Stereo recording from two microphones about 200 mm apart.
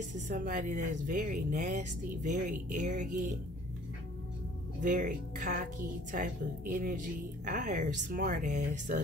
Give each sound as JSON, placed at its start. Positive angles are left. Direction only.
{"t": 0.3, "sound": "speech", "side_deg": -40}
{"t": 4.8, "sound": "speech", "side_deg": -40}